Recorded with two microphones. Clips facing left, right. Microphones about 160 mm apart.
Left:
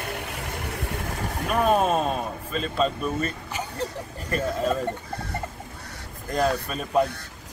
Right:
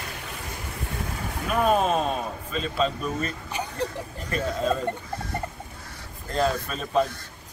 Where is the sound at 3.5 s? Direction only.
15° right (ahead or behind).